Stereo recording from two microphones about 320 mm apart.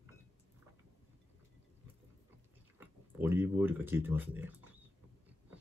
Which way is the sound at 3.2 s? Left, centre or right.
Centre.